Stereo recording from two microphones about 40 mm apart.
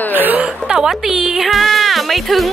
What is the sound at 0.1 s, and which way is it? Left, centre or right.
Chuckle, right.